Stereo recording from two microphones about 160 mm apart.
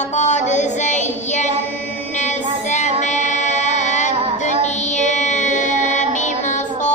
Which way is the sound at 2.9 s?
50° left (ahead or behind).